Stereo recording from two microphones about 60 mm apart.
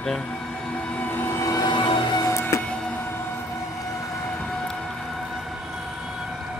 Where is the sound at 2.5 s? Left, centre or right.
Left.